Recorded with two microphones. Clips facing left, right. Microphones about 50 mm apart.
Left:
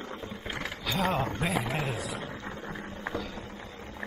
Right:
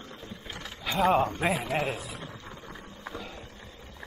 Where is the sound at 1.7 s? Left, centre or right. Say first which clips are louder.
Right 3 dB; centre.